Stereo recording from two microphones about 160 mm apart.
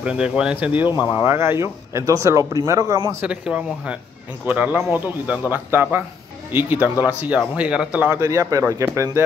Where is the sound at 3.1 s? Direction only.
10° right (ahead or behind).